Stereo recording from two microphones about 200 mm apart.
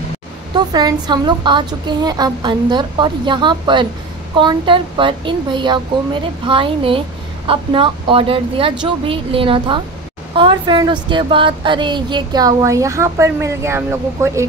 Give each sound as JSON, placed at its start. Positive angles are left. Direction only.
{"t": 0.6, "sound": "a woman's voice", "side_deg": -20}